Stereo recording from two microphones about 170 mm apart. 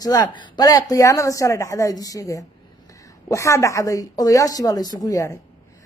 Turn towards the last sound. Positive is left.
turn(degrees=20)  # may be behind; listen again after turning